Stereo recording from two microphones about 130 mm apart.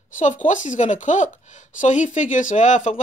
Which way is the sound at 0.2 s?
75° left (ahead or behind).